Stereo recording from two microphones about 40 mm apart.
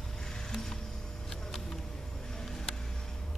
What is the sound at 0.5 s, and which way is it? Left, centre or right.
Music, centre.